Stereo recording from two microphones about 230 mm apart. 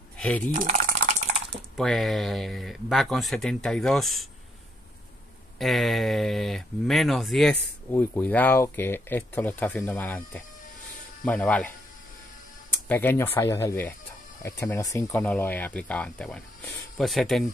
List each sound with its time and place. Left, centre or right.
0.5 s typing: right
1.8 s speech: centre
5.6 s speech: centre
12.8 s speech: centre